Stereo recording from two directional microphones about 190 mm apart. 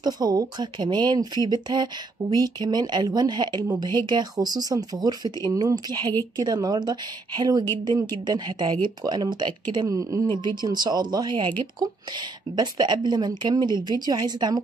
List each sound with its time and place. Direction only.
0.0 s a woman's voice: 20° right (ahead or behind)